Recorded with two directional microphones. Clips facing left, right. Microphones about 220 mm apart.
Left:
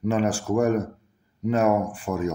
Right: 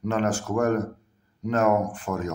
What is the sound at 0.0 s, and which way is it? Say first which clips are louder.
Speech: left 2 dB; 10° left (ahead or behind).